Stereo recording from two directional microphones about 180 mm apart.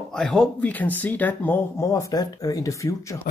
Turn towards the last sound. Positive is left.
turn(degrees=20)  # may be behind; listen again after turning